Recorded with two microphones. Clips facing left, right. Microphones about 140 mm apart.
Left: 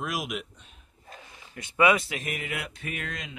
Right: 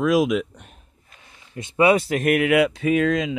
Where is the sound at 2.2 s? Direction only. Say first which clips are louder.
Right 17 dB; 70° right (ahead or behind); by 2.8 s 90° right.